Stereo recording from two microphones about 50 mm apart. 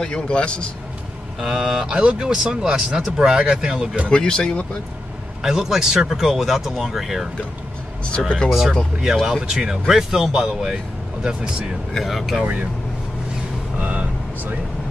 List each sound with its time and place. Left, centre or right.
0.0 s a man's voice: centre
1.4 s speech: centre
4.1 s speech: centre
5.4 s speech: centre
8.5 s speech: centre
10.5 s speech: centre
11.9 s speech: centre
13.7 s vehicle: right